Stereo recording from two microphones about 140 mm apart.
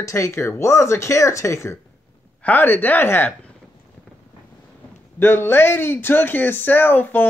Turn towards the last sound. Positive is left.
turn(degrees=15)  # may be behind; listen again after turning